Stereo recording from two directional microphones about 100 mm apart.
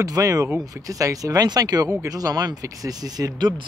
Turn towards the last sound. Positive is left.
turn(degrees=-40)  # may be behind; listen again after turning